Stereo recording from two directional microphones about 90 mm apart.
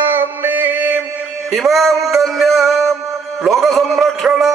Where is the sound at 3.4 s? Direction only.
Centre (ahead or behind).